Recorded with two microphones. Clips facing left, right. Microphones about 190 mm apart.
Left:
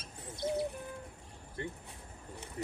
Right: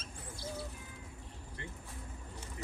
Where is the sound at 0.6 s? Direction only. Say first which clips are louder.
Left 9 dB; 60° left (ahead or behind).